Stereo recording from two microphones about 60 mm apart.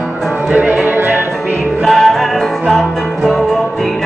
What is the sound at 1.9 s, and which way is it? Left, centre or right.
Music, centre.